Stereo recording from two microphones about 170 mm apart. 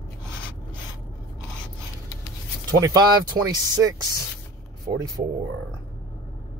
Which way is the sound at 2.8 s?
20° right (ahead or behind).